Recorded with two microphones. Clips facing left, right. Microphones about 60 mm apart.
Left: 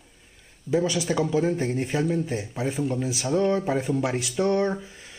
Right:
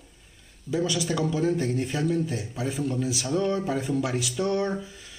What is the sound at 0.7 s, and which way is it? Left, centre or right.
A man's voice, left.